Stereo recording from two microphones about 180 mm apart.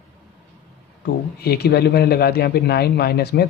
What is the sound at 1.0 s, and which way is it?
Speech, 60° left (ahead or behind).